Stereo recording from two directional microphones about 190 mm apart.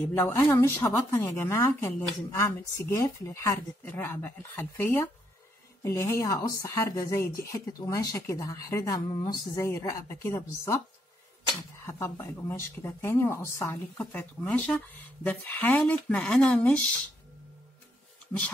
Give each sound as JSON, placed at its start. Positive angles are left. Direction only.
{"t": 0.1, "sound": "a woman's voice", "side_deg": 10}
{"t": 11.8, "sound": "a woman's voice", "side_deg": 15}